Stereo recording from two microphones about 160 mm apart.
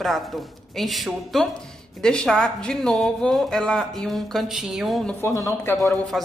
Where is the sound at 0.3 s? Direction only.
Centre (ahead or behind).